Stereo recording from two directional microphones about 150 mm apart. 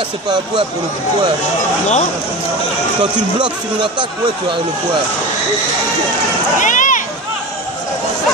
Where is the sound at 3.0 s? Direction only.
30° right (ahead or behind).